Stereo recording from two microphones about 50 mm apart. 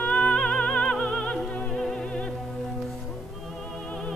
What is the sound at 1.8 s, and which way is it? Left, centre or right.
Music, centre.